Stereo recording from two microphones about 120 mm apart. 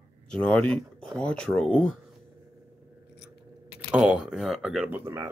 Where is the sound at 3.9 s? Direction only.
10° right (ahead or behind).